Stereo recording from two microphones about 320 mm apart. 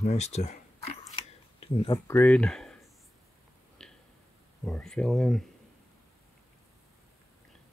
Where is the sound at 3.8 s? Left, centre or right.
Centre.